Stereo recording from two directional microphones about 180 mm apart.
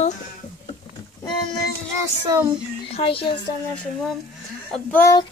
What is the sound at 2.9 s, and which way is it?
Speech, 30° left (ahead or behind).